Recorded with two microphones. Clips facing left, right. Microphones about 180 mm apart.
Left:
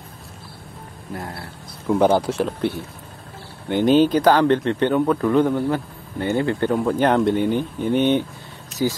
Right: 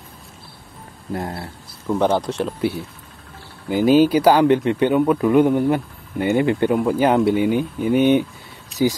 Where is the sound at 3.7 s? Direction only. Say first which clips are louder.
Right 1 dB; 5° right (ahead or behind).